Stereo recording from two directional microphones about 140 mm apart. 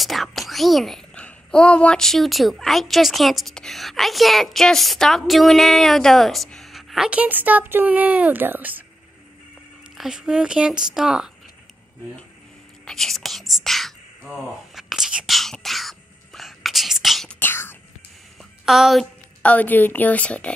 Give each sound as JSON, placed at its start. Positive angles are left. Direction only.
{"t": 0.0, "sound": "a child's voice", "side_deg": 0}
{"t": 9.9, "sound": "a child's voice", "side_deg": -5}
{"t": 12.8, "sound": "speech", "side_deg": 0}
{"t": 17.4, "sound": "speech", "side_deg": 15}
{"t": 18.4, "sound": "a sound", "side_deg": 0}
{"t": 19.4, "sound": "a woman's voice", "side_deg": 10}